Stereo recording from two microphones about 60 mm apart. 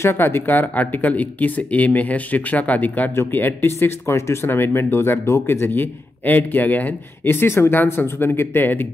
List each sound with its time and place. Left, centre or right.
0.0 s speech: left
7.2 s speech: left